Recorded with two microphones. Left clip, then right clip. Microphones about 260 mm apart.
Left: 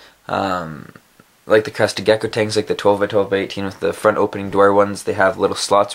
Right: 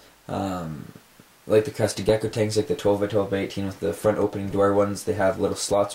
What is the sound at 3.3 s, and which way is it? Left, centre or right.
Speech, centre.